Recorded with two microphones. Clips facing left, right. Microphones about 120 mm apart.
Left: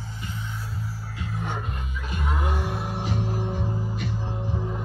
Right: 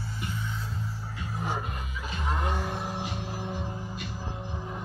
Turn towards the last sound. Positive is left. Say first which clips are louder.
# left 6 dB
turn(degrees=50)  # may be behind; listen again after turning